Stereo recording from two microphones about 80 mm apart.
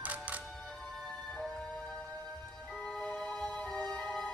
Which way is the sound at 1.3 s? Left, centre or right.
Centre.